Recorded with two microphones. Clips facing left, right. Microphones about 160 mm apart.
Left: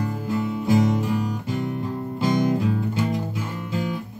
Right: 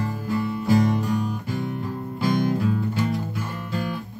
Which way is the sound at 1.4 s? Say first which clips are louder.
Left 2 dB; 15° left (ahead or behind).